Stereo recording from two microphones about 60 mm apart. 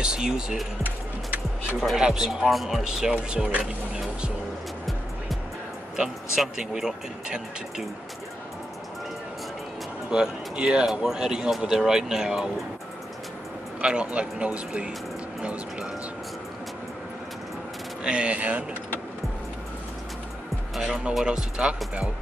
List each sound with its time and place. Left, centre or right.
0.0 s speech: centre
2.0 s speech: centre
6.3 s speech: centre
10.1 s speech: centre
13.7 s speech: centre
18.0 s speech: centre
20.7 s speech: centre